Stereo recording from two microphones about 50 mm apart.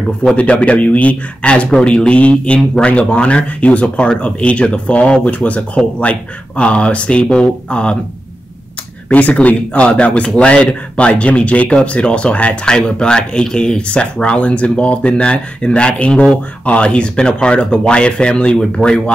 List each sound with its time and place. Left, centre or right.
0.4 s speech: left
9.1 s speech: left